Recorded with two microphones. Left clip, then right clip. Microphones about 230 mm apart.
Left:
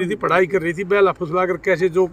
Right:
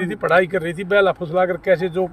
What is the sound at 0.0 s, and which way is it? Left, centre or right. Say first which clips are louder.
Speech: right 1 dB; centre.